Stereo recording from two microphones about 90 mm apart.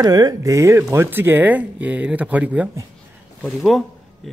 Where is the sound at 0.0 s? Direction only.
45° right (ahead or behind); by 2.7 s 15° right (ahead or behind).